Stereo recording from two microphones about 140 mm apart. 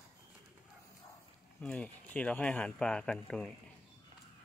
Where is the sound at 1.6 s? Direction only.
10° left (ahead or behind).